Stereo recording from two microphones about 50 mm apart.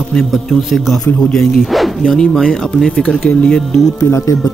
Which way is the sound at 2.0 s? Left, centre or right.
Centre.